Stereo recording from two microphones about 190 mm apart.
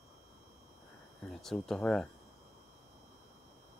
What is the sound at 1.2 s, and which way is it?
Speech, centre (ahead or behind).